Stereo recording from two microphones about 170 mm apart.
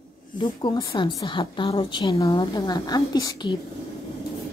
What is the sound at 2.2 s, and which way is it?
A woman's voice, 20° left (ahead or behind).